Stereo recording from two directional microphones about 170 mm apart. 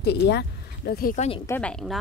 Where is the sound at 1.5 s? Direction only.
5° left (ahead or behind).